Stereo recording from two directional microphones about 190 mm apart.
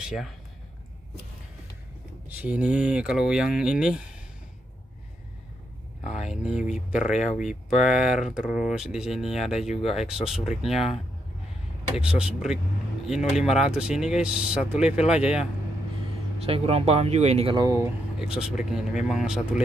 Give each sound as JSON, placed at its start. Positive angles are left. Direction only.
{"t": 0.0, "sound": "speech", "side_deg": 0}
{"t": 2.2, "sound": "speech", "side_deg": -10}
{"t": 6.0, "sound": "speech", "side_deg": -5}
{"t": 12.0, "sound": "speech", "side_deg": -5}
{"t": 16.4, "sound": "speech", "side_deg": -30}
{"t": 17.6, "sound": "speech", "side_deg": -15}
{"t": 18.2, "sound": "speech", "side_deg": -5}